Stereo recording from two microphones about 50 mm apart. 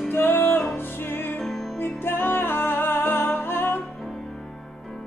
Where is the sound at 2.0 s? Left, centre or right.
Left.